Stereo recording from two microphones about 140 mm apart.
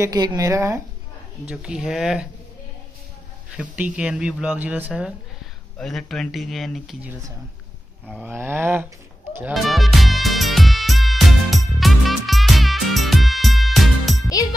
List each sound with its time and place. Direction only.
0.0 s a woman's voice: 25° right (ahead or behind)
1.5 s speech: 5° right (ahead or behind)
3.5 s speech: 10° right (ahead or behind)
5.8 s speech: 5° left (ahead or behind)
8.1 s speech: 10° right (ahead or behind)
9.5 s music: centre (ahead or behind)